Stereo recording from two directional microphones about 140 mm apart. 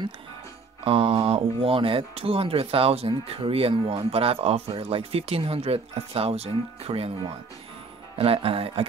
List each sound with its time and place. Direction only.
0.8 s speech: 40° right (ahead or behind)
8.2 s speech: 40° right (ahead or behind)